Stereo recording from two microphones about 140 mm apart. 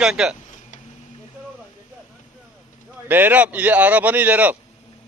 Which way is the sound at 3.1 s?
15° right (ahead or behind).